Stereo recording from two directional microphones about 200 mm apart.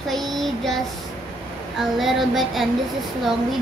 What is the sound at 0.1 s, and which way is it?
Child singing, centre (ahead or behind).